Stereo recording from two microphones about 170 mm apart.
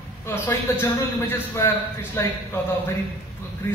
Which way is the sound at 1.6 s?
15° left (ahead or behind).